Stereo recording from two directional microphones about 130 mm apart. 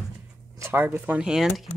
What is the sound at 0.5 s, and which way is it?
Speech, 20° right (ahead or behind).